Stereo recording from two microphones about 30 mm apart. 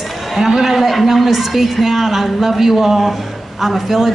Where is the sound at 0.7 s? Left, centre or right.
Centre.